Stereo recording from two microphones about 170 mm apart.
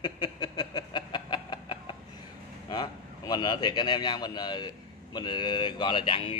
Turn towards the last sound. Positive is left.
turn(degrees=30)  # may be behind; listen again after turning